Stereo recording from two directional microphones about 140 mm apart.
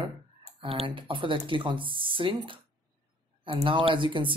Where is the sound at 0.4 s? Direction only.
45° right (ahead or behind).